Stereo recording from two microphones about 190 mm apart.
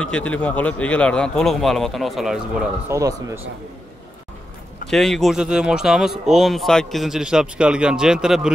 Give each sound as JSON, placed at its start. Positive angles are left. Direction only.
{"t": 0.0, "sound": "speech", "side_deg": 5}
{"t": 2.9, "sound": "speech", "side_deg": -15}
{"t": 4.8, "sound": "speech", "side_deg": 0}